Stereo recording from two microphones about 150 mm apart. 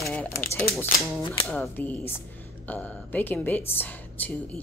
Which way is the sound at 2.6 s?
10° left (ahead or behind).